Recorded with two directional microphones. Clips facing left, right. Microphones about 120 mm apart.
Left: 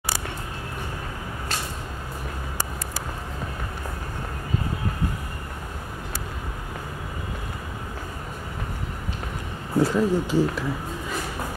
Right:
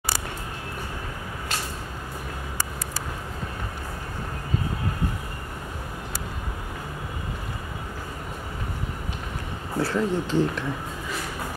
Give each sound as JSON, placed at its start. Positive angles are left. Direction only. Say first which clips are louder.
{"t": 9.8, "sound": "speech", "louder": "left 4 dB", "side_deg": 15}